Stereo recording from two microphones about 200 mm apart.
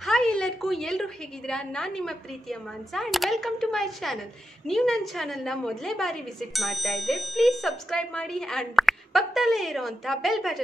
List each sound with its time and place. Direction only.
0.0 s a woman's voice: centre (ahead or behind)